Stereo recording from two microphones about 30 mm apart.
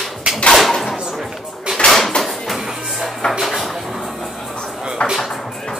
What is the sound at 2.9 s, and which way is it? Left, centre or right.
Music, centre.